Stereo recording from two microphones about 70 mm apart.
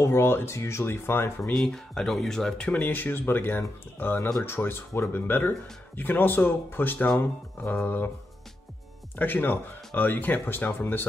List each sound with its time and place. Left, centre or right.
0.0 s speech: left
1.5 s speech: centre; by 8.1 s left
9.1 s speech: left